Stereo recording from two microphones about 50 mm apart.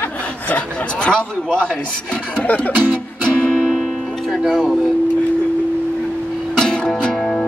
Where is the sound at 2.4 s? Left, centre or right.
Left.